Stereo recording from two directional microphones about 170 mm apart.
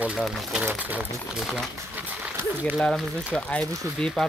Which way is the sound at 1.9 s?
10° right (ahead or behind).